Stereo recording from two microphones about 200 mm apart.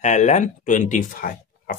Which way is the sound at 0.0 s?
35° left (ahead or behind).